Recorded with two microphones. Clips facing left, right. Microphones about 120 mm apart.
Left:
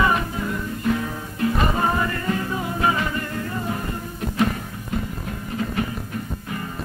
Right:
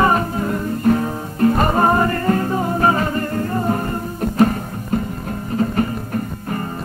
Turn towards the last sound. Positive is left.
turn(degrees=-40)  # may be behind; listen again after turning